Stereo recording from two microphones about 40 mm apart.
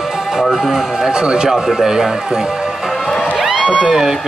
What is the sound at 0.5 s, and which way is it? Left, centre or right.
A man's voice, centre.